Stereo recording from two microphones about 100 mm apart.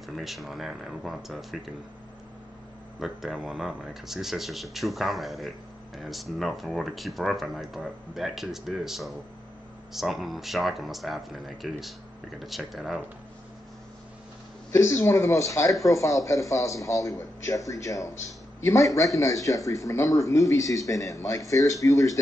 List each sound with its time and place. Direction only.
0.1 s speech: centre (ahead or behind)
3.0 s speech: 5° right (ahead or behind)
14.7 s a man's voice: 25° left (ahead or behind)